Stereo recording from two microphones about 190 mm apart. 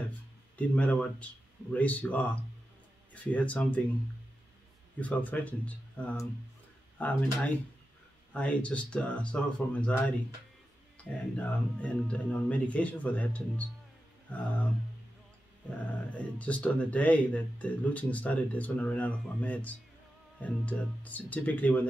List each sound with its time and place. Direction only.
0.6 s speech: 5° left (ahead or behind)
5.0 s speech: 10° left (ahead or behind)
11.3 s speech: 5° left (ahead or behind)
16.2 s speech: 5° left (ahead or behind)